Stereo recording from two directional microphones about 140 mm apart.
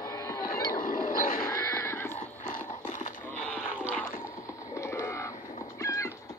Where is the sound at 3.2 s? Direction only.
10° left (ahead or behind).